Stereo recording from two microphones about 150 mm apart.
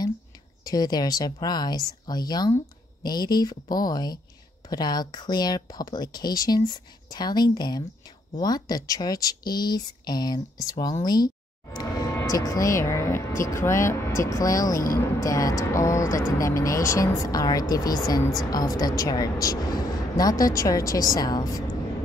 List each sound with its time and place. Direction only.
0.7 s speech: 25° left (ahead or behind)